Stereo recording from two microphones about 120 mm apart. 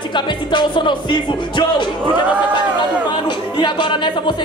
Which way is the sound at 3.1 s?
40° left (ahead or behind).